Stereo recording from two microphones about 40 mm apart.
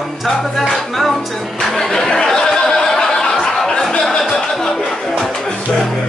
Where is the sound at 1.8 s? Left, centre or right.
Centre.